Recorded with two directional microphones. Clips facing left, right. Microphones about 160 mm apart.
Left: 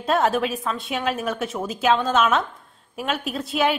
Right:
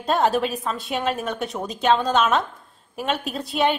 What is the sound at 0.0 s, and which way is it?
A woman's voice, centre (ahead or behind).